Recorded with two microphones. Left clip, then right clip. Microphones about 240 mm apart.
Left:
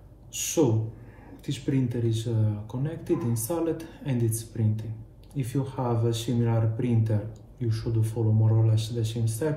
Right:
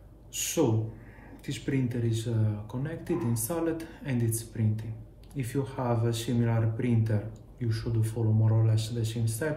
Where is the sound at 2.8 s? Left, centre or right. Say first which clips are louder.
Left 3 dB; centre.